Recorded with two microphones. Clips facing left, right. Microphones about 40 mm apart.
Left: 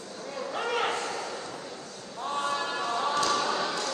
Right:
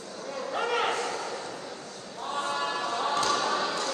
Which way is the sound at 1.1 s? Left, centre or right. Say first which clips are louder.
Right 1 dB; right.